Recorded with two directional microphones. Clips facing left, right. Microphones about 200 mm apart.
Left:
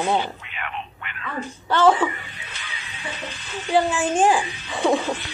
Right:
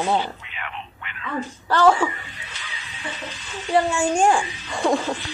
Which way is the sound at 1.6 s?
Centre (ahead or behind).